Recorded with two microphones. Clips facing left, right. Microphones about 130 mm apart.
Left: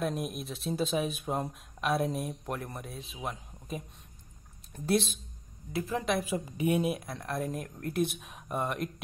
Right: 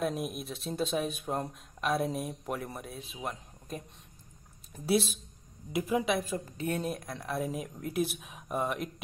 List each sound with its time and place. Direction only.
0.0 s speech: centre (ahead or behind)
5.7 s a woman's voice: 15° right (ahead or behind)
6.0 s speech: 5° left (ahead or behind)